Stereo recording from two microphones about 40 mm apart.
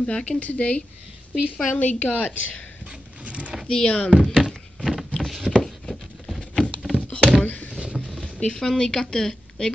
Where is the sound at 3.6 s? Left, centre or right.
Left.